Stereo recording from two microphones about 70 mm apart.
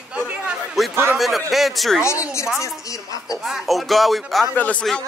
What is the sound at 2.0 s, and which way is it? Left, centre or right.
Speech, left.